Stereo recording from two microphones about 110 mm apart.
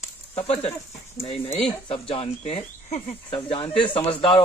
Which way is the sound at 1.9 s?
55° left (ahead or behind).